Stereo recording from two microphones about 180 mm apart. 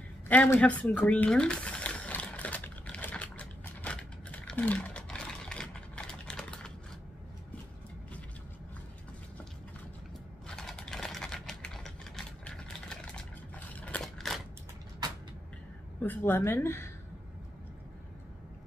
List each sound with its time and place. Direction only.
0.3 s speech: 10° left (ahead or behind)
1.0 s typing: 10° left (ahead or behind)
10.4 s typing: centre (ahead or behind)
16.0 s a woman's voice: 10° left (ahead or behind)